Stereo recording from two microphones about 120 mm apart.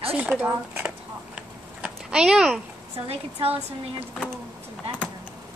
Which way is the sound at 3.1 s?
55° right (ahead or behind).